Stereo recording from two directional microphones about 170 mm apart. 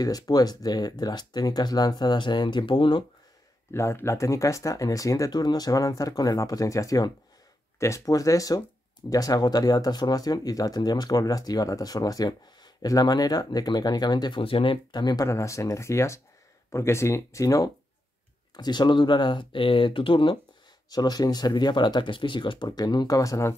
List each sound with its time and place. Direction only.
0.0 s speech: 20° left (ahead or behind)
3.7 s speech: 15° left (ahead or behind)